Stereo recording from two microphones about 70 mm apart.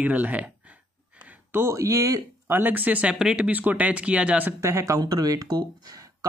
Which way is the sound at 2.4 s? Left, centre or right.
Right.